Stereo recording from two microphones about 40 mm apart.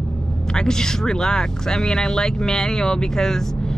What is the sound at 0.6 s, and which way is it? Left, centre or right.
Speech, centre.